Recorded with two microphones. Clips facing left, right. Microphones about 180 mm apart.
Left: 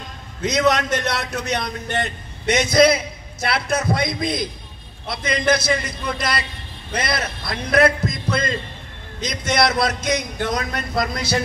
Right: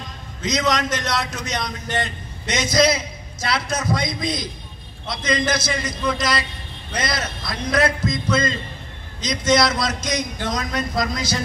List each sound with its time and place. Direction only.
0.4 s a man's voice: 60° left (ahead or behind)